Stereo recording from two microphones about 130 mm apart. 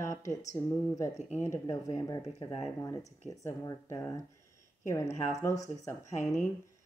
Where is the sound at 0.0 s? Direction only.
25° left (ahead or behind).